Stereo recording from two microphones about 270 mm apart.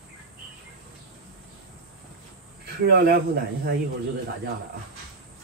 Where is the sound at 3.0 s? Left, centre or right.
Right.